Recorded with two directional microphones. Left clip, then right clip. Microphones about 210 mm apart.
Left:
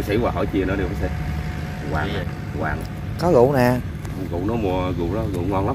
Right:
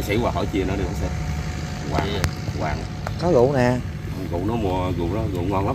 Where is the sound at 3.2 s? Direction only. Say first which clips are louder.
Left 2 dB; 5° left (ahead or behind).